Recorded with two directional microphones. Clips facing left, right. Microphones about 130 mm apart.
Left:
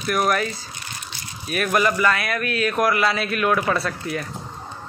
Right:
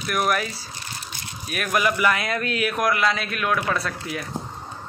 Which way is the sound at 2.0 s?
20° right (ahead or behind).